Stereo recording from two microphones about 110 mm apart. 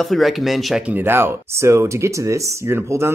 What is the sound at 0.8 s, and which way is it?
Speech, 20° right (ahead or behind).